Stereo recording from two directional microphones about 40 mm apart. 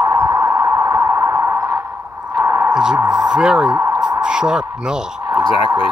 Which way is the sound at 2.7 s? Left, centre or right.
Centre.